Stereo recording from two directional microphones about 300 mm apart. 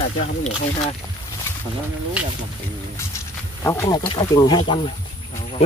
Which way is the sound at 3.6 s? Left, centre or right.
Centre.